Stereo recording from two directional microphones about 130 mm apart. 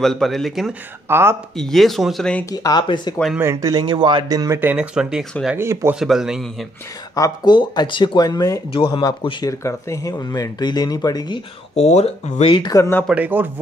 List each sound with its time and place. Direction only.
0.0 s speech: centre (ahead or behind)
1.0 s speech: 20° right (ahead or behind)
1.6 s speech: centre (ahead or behind)
2.5 s speech: 30° left (ahead or behind)
3.3 s speech: 20° right (ahead or behind)
4.6 s speech: 10° right (ahead or behind)
5.6 s speech: 20° right (ahead or behind)
5.9 s speech: 5° right (ahead or behind)
7.2 s speech: 30° left (ahead or behind)
8.7 s speech: 40° left (ahead or behind)
9.5 s speech: 25° left (ahead or behind)
11.7 s speech: 55° left (ahead or behind)
12.7 s speech: 25° left (ahead or behind)
13.1 s speech: 15° right (ahead or behind)